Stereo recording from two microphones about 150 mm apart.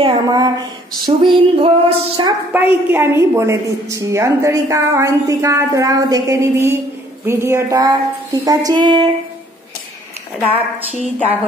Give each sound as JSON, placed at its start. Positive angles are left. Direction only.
{"t": 0.0, "sound": "a sound", "side_deg": -25}
{"t": 2.5, "sound": "a woman's voice", "side_deg": -15}
{"t": 10.8, "sound": "a woman's voice", "side_deg": -10}